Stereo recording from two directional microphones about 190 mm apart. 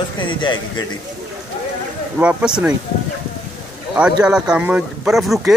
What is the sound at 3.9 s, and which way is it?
Speech, 5° right (ahead or behind).